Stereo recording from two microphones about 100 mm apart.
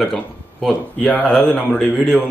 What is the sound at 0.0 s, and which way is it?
Speech, 5° left (ahead or behind).